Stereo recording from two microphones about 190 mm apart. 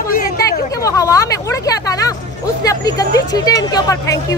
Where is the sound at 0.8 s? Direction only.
15° left (ahead or behind).